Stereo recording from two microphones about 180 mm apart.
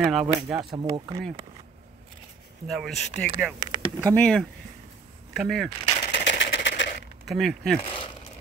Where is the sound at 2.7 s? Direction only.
Centre (ahead or behind).